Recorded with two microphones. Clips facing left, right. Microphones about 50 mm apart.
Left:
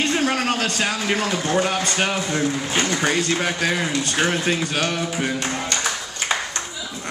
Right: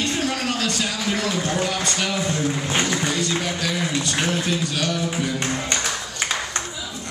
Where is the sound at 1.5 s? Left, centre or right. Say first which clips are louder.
Left 3 dB; left.